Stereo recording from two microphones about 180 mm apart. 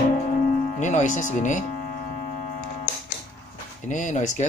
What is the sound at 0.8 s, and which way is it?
Speech, 45° left (ahead or behind).